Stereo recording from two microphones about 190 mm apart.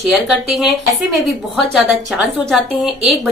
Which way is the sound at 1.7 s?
Centre (ahead or behind).